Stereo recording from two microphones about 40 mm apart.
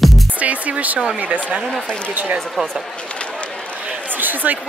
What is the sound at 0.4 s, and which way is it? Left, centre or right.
Speech, right.